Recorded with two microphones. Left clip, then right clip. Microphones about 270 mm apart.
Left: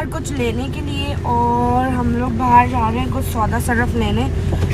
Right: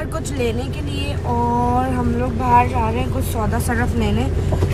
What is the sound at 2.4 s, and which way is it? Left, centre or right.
Speech, centre.